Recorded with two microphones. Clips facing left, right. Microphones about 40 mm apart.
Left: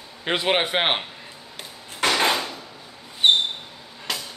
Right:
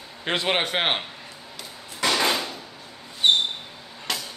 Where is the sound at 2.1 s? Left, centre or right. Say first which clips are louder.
Left 2 dB; left.